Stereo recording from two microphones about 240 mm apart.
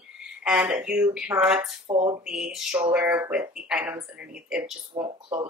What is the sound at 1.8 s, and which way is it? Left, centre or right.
Speech, right.